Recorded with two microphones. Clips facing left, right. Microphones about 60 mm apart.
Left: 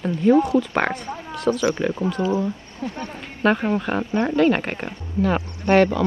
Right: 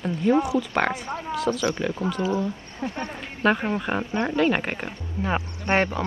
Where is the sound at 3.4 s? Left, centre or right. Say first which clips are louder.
Left 3 dB; centre.